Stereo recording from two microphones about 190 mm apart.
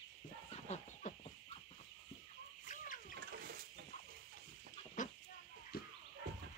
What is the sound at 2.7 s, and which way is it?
Chicken, 45° left (ahead or behind).